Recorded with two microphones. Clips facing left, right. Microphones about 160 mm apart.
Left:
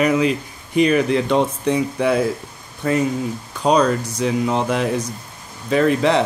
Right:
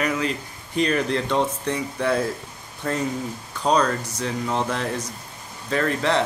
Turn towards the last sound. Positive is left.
turn(degrees=15)  # may be behind; listen again after turning